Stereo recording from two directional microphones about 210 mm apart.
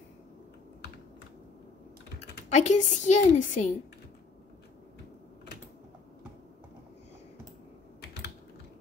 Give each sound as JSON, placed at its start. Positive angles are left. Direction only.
{"t": 2.5, "sound": "a woman's voice", "side_deg": 35}